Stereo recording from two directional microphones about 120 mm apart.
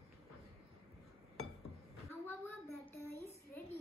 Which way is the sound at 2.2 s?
20° left (ahead or behind).